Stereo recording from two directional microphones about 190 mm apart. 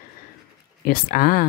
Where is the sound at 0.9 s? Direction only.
50° left (ahead or behind).